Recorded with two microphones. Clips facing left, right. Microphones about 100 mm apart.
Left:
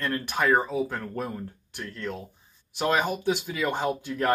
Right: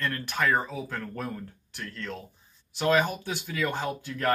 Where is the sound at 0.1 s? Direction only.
15° left (ahead or behind).